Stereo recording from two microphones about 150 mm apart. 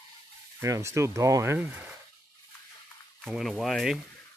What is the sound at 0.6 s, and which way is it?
Speech, 20° right (ahead or behind).